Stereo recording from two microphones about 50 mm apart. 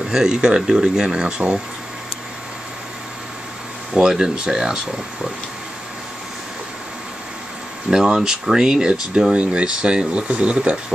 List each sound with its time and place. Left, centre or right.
0.1 s speech: centre
3.9 s speech: centre
7.9 s speech: centre